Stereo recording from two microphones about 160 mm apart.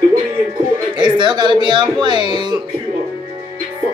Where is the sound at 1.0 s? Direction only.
30° right (ahead or behind).